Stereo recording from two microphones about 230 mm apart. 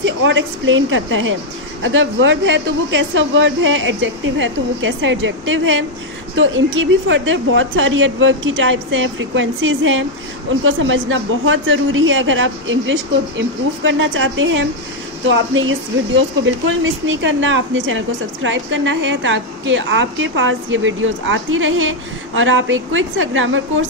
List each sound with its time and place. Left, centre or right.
0.0 s a woman's voice: right